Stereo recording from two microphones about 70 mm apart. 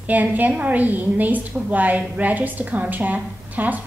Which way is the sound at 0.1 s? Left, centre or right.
Right.